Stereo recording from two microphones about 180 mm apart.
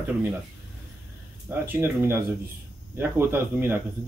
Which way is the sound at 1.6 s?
15° right (ahead or behind).